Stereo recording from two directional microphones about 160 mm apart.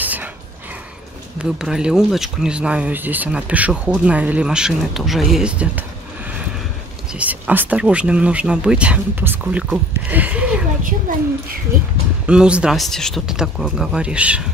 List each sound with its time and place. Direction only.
0.0 s dog: 10° right (ahead or behind)
1.4 s speech: 5° right (ahead or behind)
7.1 s speech: 10° right (ahead or behind)
10.8 s a woman's voice: 60° right (ahead or behind)
12.3 s speech: 5° right (ahead or behind)